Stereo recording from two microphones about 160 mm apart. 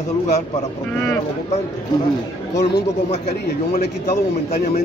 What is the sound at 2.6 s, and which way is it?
Speech, 90° left.